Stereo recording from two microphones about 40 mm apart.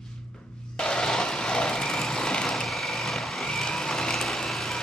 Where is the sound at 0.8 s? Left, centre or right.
Centre.